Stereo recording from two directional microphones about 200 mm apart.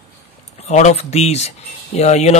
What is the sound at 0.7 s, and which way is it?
A man's voice, 35° left (ahead or behind).